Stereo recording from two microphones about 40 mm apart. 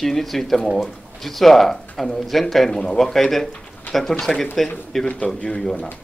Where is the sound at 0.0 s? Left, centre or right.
Centre.